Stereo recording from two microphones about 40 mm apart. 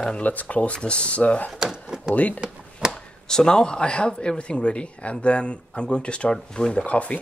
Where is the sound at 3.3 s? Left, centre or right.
Centre.